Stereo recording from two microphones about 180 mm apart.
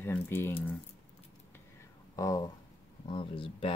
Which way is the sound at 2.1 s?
20° left (ahead or behind).